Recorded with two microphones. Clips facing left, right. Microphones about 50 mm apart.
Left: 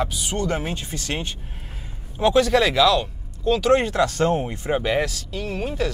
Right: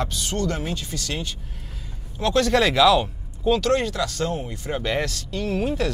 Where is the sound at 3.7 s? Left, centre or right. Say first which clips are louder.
Left 4 dB; left.